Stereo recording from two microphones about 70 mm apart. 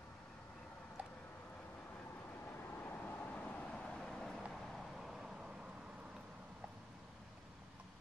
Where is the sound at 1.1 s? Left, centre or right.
Left; by 6.7 s centre.